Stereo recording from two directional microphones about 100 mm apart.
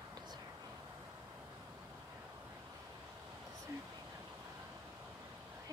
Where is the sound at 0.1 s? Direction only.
45° right (ahead or behind).